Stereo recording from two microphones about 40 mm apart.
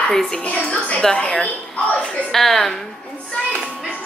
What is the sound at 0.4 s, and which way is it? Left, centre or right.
A woman's voice, left.